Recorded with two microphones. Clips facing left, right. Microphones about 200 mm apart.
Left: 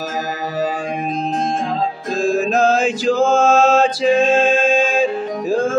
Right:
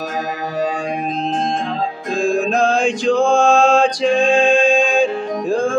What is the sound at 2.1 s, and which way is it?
Mantra, 5° left (ahead or behind).